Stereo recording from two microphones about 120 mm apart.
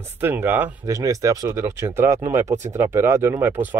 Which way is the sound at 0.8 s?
30° right (ahead or behind).